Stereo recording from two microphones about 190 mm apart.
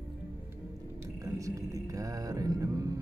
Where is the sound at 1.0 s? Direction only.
15° right (ahead or behind).